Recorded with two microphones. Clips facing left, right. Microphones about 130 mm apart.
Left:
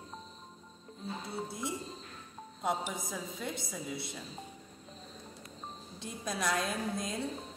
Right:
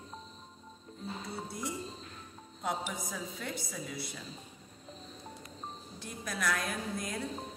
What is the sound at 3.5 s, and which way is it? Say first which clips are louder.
Speech: left 1 dB; 20° left (ahead or behind).